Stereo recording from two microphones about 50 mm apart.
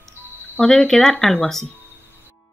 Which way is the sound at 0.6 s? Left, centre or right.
Centre.